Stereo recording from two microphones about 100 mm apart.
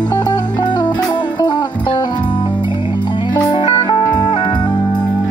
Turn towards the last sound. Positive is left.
turn(degrees=55)  # may be behind; listen again after turning